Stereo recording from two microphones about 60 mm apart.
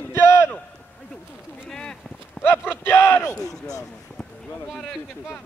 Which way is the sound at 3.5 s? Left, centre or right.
Left.